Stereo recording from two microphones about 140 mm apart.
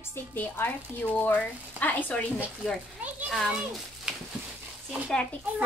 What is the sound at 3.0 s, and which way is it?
A child's voice, 10° right (ahead or behind).